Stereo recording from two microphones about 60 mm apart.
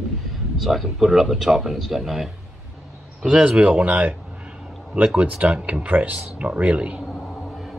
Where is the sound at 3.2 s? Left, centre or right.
Centre.